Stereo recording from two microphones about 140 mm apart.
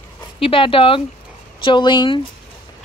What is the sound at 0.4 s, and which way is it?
Speech, 40° left (ahead or behind).